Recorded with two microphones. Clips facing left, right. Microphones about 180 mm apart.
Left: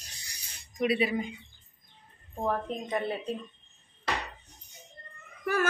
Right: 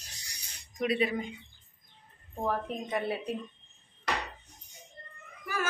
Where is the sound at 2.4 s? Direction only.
5° right (ahead or behind).